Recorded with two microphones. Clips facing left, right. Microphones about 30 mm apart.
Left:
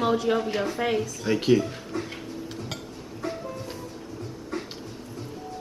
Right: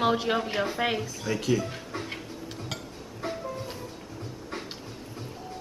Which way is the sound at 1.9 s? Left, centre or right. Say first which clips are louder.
Left 5 dB; right.